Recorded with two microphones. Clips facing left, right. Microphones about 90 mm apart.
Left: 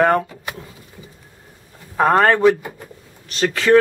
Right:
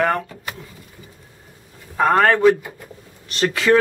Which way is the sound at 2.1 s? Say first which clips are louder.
Left 1 dB; 20° left (ahead or behind).